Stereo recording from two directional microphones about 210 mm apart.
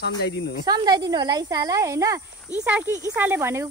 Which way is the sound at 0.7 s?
20° right (ahead or behind).